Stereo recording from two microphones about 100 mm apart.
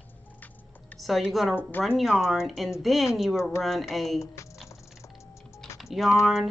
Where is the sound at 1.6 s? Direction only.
20° left (ahead or behind).